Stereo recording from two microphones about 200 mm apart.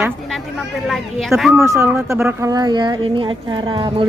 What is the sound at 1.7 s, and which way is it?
A woman's voice, 10° right (ahead or behind).